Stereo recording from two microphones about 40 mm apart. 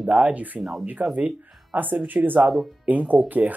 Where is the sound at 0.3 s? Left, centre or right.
Right.